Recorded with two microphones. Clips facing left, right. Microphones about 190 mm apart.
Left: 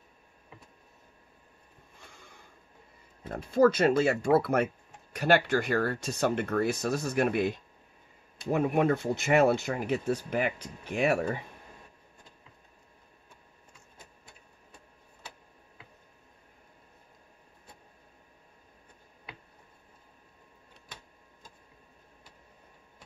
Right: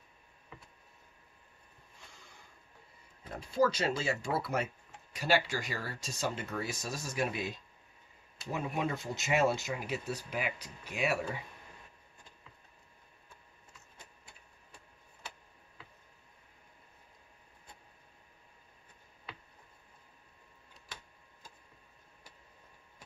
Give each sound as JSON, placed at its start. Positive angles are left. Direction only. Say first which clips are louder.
{"t": 3.3, "sound": "speech", "louder": "left 7 dB", "side_deg": 50}